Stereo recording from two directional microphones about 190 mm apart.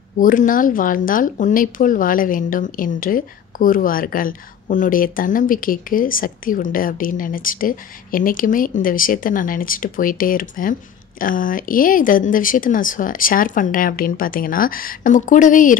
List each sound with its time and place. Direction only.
0.2 s speech: 45° left (ahead or behind)